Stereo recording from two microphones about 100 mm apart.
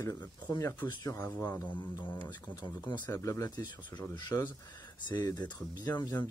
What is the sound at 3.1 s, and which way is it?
Speech, 35° left (ahead or behind).